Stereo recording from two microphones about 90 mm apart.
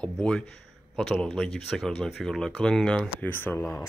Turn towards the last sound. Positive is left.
turn(degrees=20)  # may be behind; listen again after turning